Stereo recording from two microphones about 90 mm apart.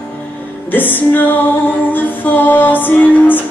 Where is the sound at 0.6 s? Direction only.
20° left (ahead or behind).